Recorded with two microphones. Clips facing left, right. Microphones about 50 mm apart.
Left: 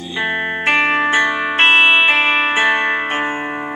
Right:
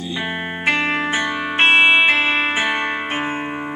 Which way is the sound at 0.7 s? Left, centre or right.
Left.